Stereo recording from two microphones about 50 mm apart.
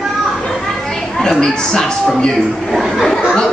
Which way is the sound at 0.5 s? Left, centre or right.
Centre.